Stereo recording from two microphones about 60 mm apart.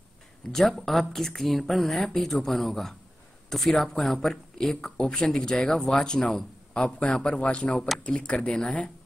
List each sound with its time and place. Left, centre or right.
0.5 s speech: centre